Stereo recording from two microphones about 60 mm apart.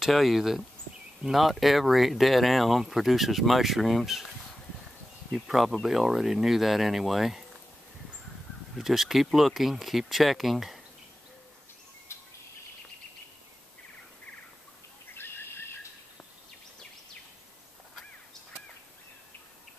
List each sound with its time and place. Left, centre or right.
0.0 s speech: centre
5.3 s speech: centre
8.7 s speech: centre
12.1 s bird: left
15.1 s bird: left